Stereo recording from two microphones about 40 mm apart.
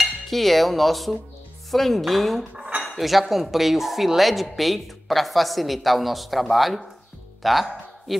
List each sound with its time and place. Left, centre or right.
0.0 s dishes: centre
1.7 s speech: centre
2.5 s dishes: right
3.0 s speech: centre